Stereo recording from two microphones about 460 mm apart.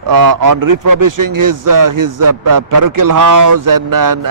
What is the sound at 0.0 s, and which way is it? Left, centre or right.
A man's voice, right.